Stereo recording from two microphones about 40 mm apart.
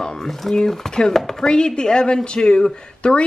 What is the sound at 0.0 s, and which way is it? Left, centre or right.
Speech, centre.